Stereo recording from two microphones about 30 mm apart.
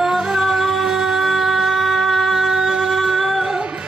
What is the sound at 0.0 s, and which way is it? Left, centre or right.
Music, right.